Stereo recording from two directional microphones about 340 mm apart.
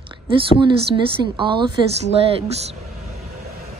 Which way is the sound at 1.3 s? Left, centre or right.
Centre.